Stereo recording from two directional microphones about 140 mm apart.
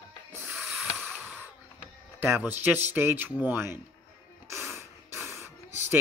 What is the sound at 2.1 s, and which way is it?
Speech, 15° right (ahead or behind).